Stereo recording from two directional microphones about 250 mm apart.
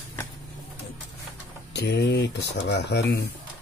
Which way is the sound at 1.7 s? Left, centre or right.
Left.